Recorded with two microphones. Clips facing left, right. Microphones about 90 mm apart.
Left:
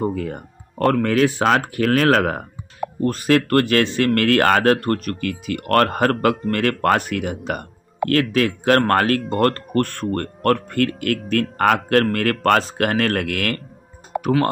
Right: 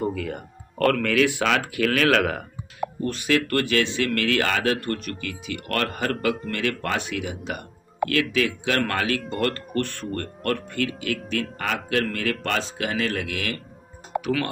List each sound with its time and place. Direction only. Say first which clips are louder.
0.0 s speech: left 4 dB; 35° left (ahead or behind)
0.7 s speech: left 3 dB; 25° left (ahead or behind); by 13.6 s 55° left (ahead or behind)
14.2 s speech: left 8 dB; 40° left (ahead or behind)